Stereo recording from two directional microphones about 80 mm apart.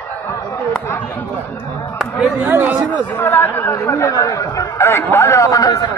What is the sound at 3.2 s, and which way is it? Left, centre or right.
Chatter, left.